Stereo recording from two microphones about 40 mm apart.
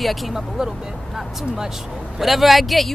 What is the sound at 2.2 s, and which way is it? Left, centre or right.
Speech, centre.